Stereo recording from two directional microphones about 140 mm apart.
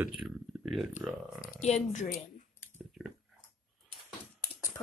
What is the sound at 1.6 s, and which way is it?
Speech, 55° left (ahead or behind).